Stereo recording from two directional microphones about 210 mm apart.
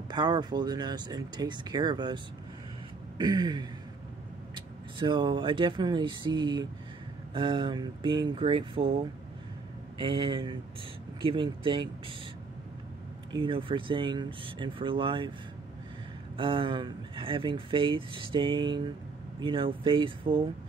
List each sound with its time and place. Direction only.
0.1 s speech: 20° right (ahead or behind)
3.2 s speech: 20° right (ahead or behind)
9.9 s speech: 25° right (ahead or behind)
13.3 s speech: 25° right (ahead or behind)
16.3 s speech: 25° right (ahead or behind)